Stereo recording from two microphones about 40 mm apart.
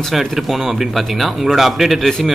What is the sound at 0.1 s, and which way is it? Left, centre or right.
A man's voice, centre.